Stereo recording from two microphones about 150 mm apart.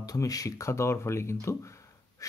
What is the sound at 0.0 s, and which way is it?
Speech, 25° left (ahead or behind).